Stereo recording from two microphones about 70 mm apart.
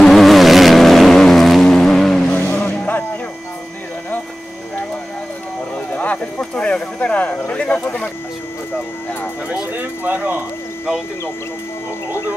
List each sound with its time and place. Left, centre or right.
0.0 s vehicle: centre
2.3 s vehicle: centre
5.9 s a sound: centre
9.8 s speech: right